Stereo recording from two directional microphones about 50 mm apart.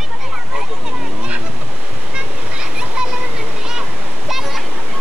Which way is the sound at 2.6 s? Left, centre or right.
Centre.